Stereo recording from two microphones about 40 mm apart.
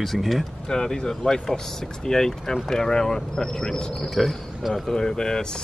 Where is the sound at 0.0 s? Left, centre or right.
Centre.